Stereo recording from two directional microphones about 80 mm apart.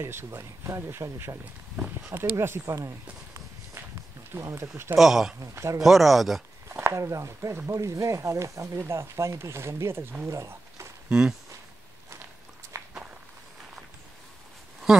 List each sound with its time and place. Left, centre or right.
0.0 s speech: right
1.4 s speech: centre
2.3 s speech: right
4.3 s speech: right
4.9 s speech: centre
5.4 s speech: right
5.8 s speech: centre
6.7 s a sound: right
7.0 s speech: right
10.2 s a sound: right
11.1 s speech: centre
12.7 s walk: right
14.9 s speech: centre